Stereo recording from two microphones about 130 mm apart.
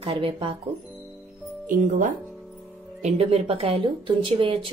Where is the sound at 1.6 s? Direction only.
90° right.